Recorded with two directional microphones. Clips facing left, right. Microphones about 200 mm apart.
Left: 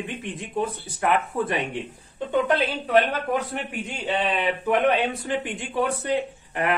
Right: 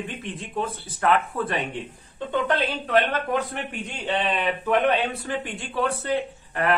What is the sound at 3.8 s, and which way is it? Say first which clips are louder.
A man's voice: even; 10° left (ahead or behind).